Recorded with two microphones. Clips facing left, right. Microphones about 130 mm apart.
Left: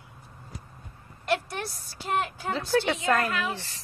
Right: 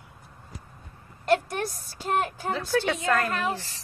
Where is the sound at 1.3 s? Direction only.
45° right (ahead or behind).